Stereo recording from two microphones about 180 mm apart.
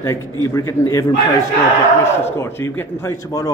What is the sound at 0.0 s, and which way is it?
A man's voice, 15° left (ahead or behind).